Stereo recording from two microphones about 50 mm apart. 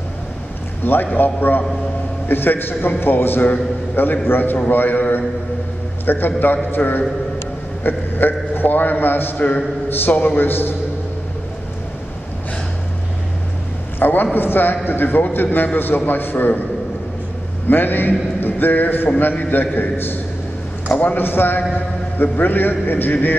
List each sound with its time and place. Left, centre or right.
1.1 s a man's voice: left
13.9 s a man's voice: left
17.6 s a man's voice: left